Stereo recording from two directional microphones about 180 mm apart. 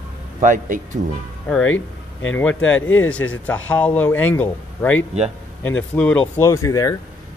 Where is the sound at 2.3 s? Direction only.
10° left (ahead or behind).